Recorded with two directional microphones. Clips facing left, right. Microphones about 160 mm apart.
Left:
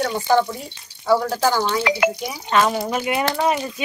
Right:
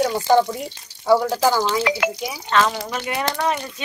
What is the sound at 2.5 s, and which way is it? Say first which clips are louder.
Speech: left 2 dB; 15° left (ahead or behind).